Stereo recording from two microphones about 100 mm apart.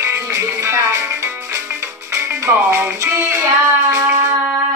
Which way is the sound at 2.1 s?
20° right (ahead or behind).